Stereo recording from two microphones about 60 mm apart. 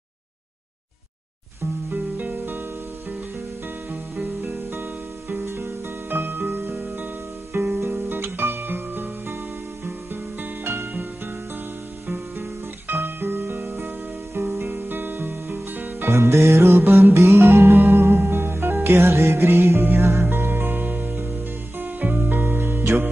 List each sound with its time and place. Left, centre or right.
1.9 s music: right
3.9 s music: right
10.4 s music: right
12.1 s music: right
16.1 s music: right